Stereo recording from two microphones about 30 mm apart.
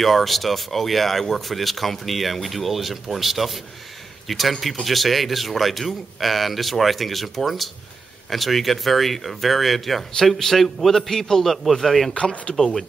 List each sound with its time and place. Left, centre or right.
0.0 s a man's voice: centre
12.1 s speech: left